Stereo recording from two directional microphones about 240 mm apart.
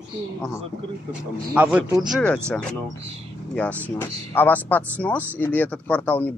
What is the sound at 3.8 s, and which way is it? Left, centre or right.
Speech, centre.